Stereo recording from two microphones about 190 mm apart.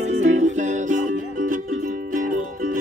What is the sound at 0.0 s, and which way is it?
Music, 35° right (ahead or behind).